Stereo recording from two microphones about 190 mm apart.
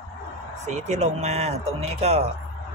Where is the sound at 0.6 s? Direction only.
40° right (ahead or behind).